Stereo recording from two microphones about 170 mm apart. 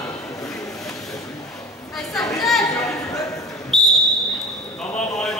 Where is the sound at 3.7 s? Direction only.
Centre (ahead or behind).